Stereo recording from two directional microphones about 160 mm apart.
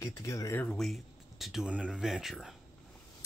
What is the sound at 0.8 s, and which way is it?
Speech, centre (ahead or behind).